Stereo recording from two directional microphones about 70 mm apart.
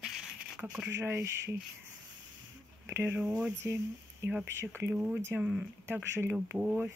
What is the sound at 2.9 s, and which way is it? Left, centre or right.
Speech, right.